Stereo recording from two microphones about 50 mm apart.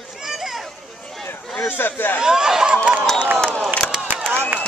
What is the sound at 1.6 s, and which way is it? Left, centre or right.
Speech, left.